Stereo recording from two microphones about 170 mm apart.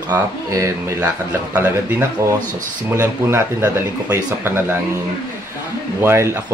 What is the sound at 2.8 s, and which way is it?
Speech, 15° right (ahead or behind).